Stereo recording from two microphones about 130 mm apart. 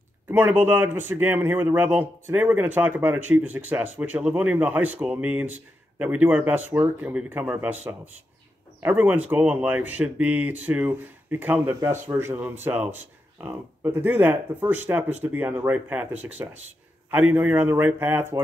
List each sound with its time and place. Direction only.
0.3 s a man's voice: 15° right (ahead or behind)